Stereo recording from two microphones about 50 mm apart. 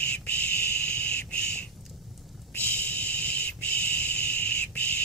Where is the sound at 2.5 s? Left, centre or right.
Left.